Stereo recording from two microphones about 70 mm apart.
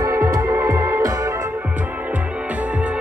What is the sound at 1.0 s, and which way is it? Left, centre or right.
Organ, right.